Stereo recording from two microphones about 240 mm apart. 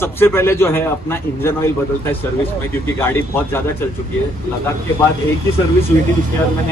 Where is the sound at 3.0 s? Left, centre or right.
Centre.